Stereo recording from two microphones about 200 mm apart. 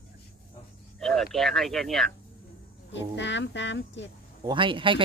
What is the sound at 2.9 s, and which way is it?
Speech, 65° left (ahead or behind).